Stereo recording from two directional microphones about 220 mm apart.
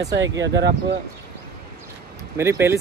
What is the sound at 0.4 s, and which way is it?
Speech, 50° right (ahead or behind).